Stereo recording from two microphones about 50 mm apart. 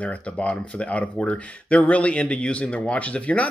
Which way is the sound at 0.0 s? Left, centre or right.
Left.